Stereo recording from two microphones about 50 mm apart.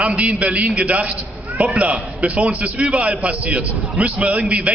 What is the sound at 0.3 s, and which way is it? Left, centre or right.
A man's voice, right.